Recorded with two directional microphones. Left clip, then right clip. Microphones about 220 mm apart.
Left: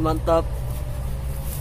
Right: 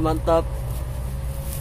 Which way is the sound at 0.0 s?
5° right (ahead or behind).